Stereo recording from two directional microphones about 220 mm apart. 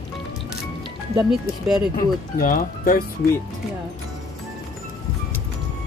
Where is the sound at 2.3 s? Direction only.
40° left (ahead or behind).